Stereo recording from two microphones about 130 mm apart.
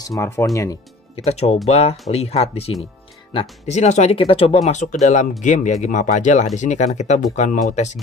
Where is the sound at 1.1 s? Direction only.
55° left (ahead or behind).